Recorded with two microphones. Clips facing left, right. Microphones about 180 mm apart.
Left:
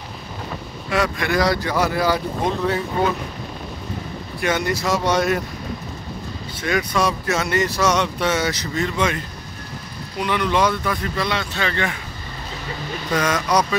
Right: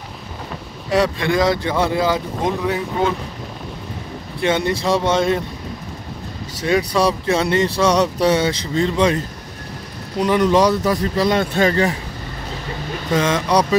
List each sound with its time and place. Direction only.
0.8 s speech: 35° right (ahead or behind); by 2.8 s 15° right (ahead or behind)
4.4 s speech: 25° right (ahead or behind)
6.6 s speech: 35° right (ahead or behind)
13.1 s speech: 25° right (ahead or behind)